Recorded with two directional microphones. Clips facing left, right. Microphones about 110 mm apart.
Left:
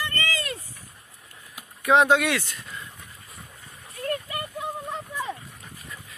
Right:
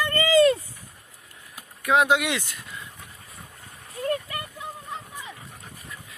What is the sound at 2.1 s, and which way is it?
Speech, 15° right (ahead or behind).